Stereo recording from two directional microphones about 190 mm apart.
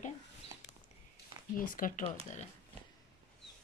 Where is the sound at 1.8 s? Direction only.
45° left (ahead or behind).